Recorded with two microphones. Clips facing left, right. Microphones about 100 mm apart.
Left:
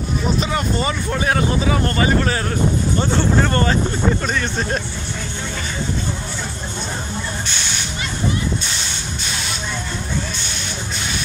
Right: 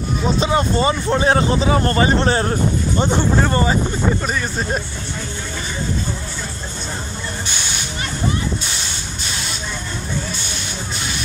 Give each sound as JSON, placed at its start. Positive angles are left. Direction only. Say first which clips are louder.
{"t": 0.4, "sound": "speech", "louder": "right 4 dB", "side_deg": -30}
{"t": 3.0, "sound": "speech", "louder": "right 1 dB", "side_deg": -15}